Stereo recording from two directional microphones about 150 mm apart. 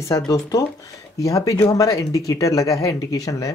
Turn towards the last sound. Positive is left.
turn(degrees=20)  # may be behind; listen again after turning